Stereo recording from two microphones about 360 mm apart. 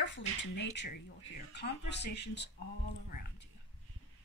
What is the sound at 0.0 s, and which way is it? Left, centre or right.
Speech, left.